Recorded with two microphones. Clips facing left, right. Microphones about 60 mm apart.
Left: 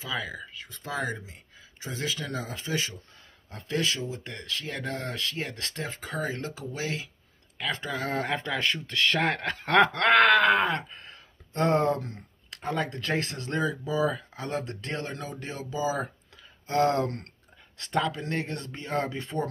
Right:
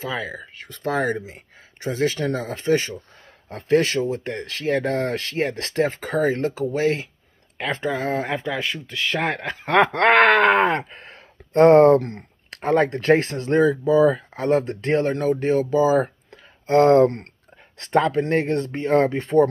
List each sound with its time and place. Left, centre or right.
0.1 s speech: right
0.6 s speech: right
7.5 s speech: right
8.4 s speech: centre
9.8 s speech: right
12.7 s speech: right
16.6 s speech: right